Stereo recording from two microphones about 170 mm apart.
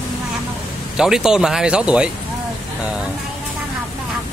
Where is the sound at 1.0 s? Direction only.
5° right (ahead or behind).